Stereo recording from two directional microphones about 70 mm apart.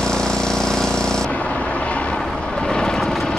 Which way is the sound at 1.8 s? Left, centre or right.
Centre.